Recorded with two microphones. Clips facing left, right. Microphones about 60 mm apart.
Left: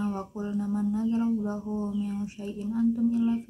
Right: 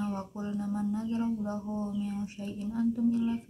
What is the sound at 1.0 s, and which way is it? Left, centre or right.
Speech, left.